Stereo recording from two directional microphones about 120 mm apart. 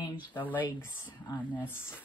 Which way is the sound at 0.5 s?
20° left (ahead or behind).